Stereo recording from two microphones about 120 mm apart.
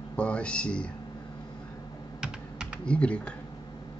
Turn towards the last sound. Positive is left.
turn(degrees=10)  # may be behind; listen again after turning